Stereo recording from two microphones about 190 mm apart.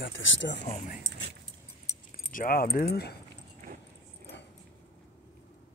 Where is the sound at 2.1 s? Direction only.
50° left (ahead or behind).